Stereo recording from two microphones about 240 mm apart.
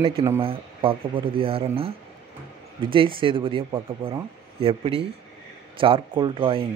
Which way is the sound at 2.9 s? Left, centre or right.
Right.